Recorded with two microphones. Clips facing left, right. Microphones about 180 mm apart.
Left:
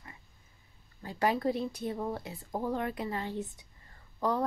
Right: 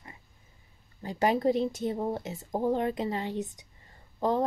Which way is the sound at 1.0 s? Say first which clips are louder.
Right 4 dB; 20° right (ahead or behind).